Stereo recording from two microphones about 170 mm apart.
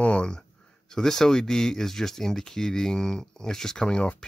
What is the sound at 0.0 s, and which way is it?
Speech, 5° left (ahead or behind).